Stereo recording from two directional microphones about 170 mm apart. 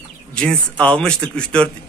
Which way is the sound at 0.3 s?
5° left (ahead or behind).